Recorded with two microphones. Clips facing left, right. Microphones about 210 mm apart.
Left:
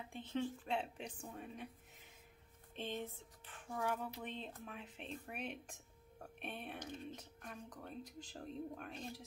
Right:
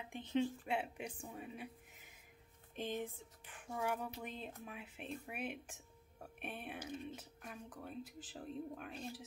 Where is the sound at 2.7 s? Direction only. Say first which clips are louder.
Right 2 dB; 15° right (ahead or behind).